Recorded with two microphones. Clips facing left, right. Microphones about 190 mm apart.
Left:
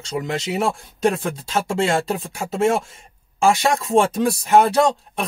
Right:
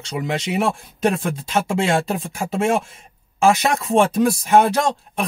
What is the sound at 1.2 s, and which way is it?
Speech, centre (ahead or behind).